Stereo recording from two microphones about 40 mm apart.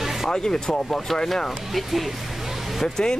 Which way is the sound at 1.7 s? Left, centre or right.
Centre.